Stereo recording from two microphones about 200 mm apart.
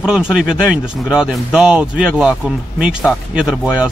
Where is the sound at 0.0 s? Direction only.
5° right (ahead or behind).